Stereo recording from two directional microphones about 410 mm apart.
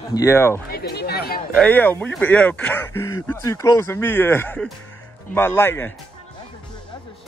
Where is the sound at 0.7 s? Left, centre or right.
Left.